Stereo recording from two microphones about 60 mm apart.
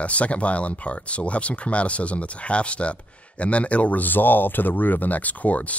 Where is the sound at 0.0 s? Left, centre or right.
Left.